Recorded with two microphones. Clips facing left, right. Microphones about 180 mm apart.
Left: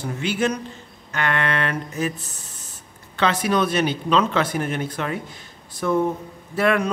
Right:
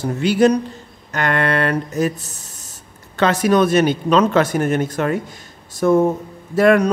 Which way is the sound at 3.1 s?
45° right (ahead or behind).